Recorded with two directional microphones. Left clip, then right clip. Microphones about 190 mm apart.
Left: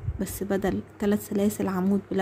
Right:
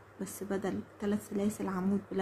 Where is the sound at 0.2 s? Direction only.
35° left (ahead or behind).